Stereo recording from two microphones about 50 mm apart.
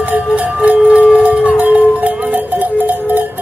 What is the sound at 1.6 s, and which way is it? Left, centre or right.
Music, right.